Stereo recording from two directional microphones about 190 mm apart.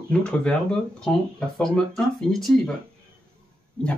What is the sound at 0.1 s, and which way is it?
Speech, 5° left (ahead or behind).